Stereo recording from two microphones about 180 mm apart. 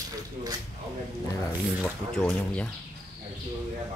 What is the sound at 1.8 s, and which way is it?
Speech, 5° left (ahead or behind).